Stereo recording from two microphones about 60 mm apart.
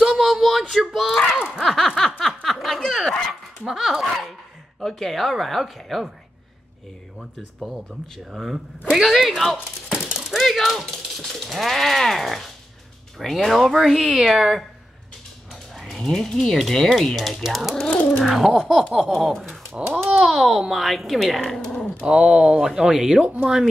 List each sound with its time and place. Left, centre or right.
0.0 s a sound: centre
3.6 s dog: centre
4.7 s speech: centre
8.4 s speech: centre
9.8 s a sound: centre
13.2 s speech: centre
15.7 s dog: centre
16.0 s speech: centre
17.7 s pigeon: left
18.2 s speech: centre
22.0 s speech: centre